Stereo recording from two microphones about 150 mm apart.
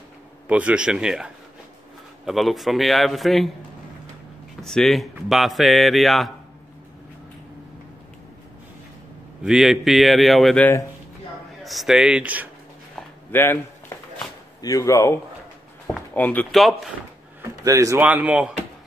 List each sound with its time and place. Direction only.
0.5 s speech: 10° right (ahead or behind)
4.6 s speech: centre (ahead or behind)
9.4 s speech: 5° right (ahead or behind)
13.3 s speech: 15° left (ahead or behind)
16.2 s speech: 10° left (ahead or behind)
16.5 s speech: centre (ahead or behind)
17.6 s speech: 20° right (ahead or behind)
18.0 s speech: 10° right (ahead or behind)